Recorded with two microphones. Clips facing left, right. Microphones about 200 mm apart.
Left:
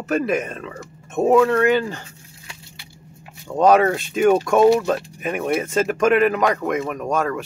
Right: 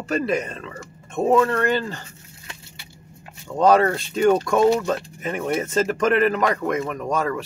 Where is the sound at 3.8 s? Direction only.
15° left (ahead or behind).